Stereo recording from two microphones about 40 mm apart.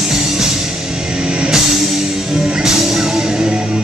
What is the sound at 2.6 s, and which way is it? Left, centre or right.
Music, centre.